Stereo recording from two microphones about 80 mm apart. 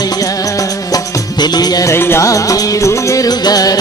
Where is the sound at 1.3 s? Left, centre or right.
Left.